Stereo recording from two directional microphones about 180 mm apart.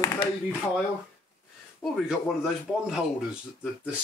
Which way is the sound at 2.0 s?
5° right (ahead or behind).